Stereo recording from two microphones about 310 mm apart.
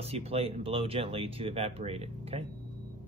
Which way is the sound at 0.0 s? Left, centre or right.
Centre.